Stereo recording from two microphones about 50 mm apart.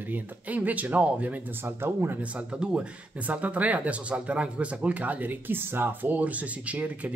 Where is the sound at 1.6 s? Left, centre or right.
Right.